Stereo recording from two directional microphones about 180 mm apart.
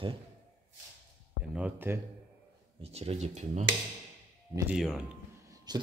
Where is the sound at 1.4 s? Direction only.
5° right (ahead or behind).